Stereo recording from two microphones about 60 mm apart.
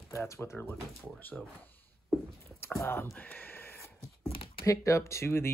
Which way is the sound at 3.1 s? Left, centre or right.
Left.